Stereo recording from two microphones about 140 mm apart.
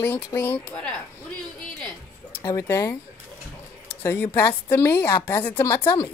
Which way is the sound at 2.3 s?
20° left (ahead or behind).